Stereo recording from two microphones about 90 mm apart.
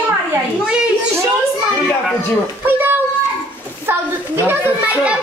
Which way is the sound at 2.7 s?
20° right (ahead or behind).